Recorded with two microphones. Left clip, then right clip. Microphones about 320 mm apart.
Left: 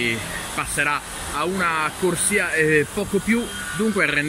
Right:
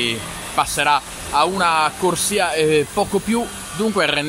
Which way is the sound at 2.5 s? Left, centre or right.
Right.